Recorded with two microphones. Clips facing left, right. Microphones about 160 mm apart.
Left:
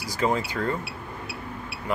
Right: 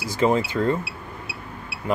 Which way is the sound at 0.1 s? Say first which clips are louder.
Right 5 dB; 25° right (ahead or behind).